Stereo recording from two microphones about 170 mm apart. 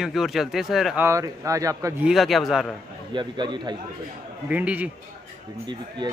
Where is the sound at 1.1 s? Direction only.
20° right (ahead or behind).